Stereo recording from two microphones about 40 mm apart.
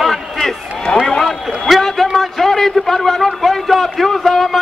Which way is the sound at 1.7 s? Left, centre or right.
Centre.